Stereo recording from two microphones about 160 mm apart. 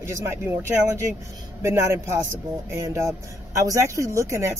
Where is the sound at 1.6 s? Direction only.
20° right (ahead or behind).